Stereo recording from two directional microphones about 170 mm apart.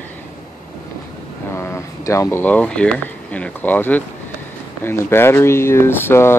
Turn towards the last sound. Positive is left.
turn(degrees=15)  # may be behind; listen again after turning